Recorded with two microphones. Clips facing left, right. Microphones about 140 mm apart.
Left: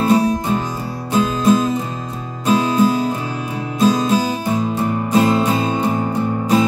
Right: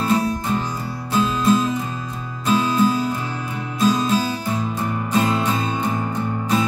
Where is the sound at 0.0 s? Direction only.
20° left (ahead or behind).